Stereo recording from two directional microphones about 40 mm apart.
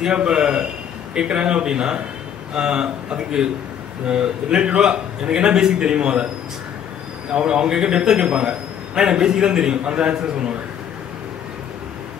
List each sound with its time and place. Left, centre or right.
0.0 s a man's voice: right
7.3 s a man's voice: right